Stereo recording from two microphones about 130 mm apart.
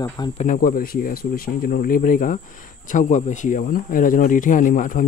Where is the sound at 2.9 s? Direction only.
70° left (ahead or behind); by 5.0 s 90° left.